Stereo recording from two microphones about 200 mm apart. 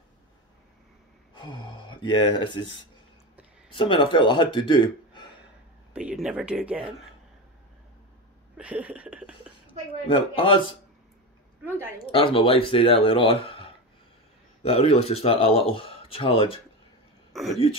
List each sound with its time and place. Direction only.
1.3 s a sound: 20° left (ahead or behind)
3.7 s a man's voice: 25° left (ahead or behind)
5.9 s speech: 5° right (ahead or behind)
8.5 s speech: 5° right (ahead or behind)
10.0 s speech: 25° left (ahead or behind)
11.6 s a woman's voice: 10° right (ahead or behind)
12.1 s speech: 25° left (ahead or behind)
14.6 s speech: 30° left (ahead or behind)
17.3 s a sound: centre (ahead or behind)